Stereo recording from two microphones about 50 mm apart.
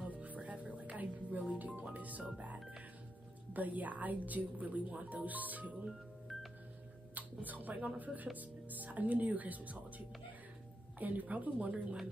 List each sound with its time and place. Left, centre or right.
0.0 s music: right
1.8 s speech: right
6.3 s music: centre
7.2 s speech: right